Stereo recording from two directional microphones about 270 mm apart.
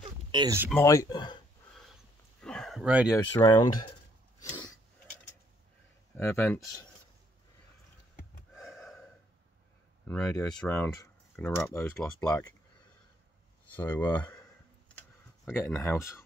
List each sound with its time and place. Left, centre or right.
0.0 s a sound: centre
0.7 s speech: centre
2.4 s a sound: centre
3.3 s speech: centre
6.1 s speech: centre
8.7 s gasp: centre
10.0 s speech: centre
13.7 s speech: centre
15.4 s speech: centre